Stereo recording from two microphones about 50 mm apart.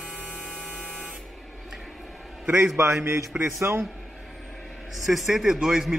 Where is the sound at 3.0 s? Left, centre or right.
Right.